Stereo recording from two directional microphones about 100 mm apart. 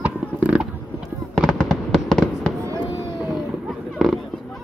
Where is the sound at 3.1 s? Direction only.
5° right (ahead or behind).